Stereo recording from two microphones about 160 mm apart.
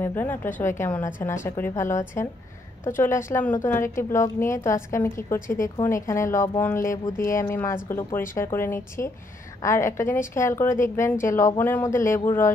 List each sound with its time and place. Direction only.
0.0 s a woman's voice: 10° left (ahead or behind)